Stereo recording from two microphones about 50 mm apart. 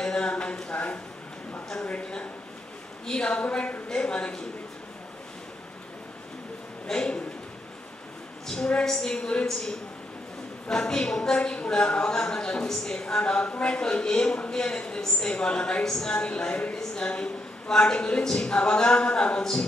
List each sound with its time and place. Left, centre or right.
0.0 s a sound: centre
1.7 s a woman's voice: centre
6.9 s a woman's voice: centre
8.5 s a woman's voice: centre
10.7 s a woman's voice: centre
15.8 s a woman's voice: centre